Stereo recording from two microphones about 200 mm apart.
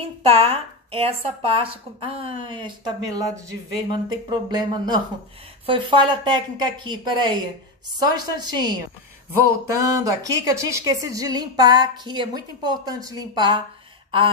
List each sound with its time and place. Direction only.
0.2 s a woman's voice: 30° right (ahead or behind)